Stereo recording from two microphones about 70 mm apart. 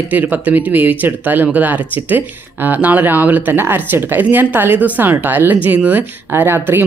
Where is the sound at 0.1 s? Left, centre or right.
Right.